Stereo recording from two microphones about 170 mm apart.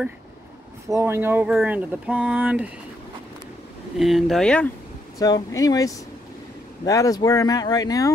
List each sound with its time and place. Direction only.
0.8 s speech: 15° right (ahead or behind)
4.0 s speech: centre (ahead or behind)
5.2 s speech: 20° left (ahead or behind)